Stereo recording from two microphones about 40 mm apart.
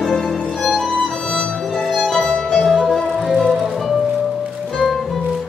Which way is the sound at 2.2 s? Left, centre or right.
Centre.